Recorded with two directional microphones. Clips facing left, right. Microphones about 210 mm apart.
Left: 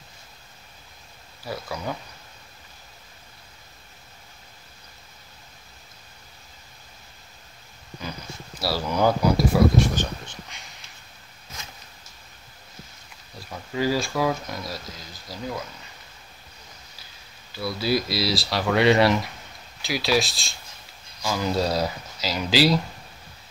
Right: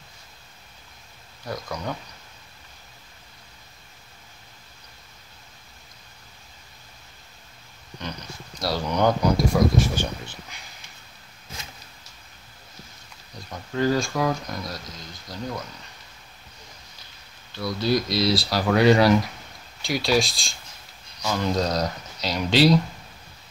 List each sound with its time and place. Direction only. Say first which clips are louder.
1.4 s speech: even; 5° left (ahead or behind)
8.5 s speech: even; 5° left (ahead or behind)
9.9 s speech: even; 10° right (ahead or behind)
13.4 s speech: right 2 dB; 5° left (ahead or behind)
17.5 s speech: right 1 dB; 5° left (ahead or behind)